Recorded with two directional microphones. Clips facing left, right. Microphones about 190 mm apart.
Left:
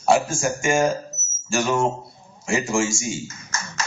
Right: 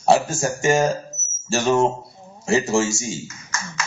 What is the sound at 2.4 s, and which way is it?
Speech, 35° right (ahead or behind).